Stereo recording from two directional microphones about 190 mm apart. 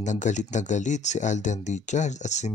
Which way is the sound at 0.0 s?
40° left (ahead or behind).